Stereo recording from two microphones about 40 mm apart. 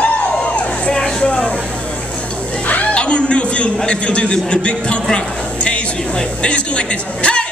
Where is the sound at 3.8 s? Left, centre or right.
Left.